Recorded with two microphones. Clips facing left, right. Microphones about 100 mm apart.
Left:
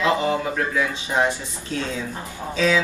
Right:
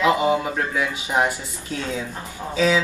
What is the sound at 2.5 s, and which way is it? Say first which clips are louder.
Speech: right 1 dB; 15° right (ahead or behind).